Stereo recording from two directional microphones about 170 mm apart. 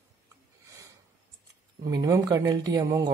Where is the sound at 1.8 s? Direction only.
20° right (ahead or behind).